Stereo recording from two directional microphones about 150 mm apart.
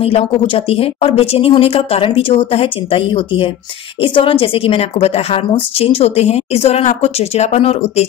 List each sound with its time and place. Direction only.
0.0 s speech: 40° left (ahead or behind)